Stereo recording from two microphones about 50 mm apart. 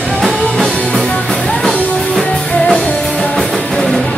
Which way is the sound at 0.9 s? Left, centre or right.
Centre.